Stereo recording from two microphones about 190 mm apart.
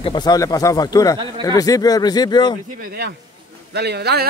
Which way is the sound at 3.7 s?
60° right (ahead or behind).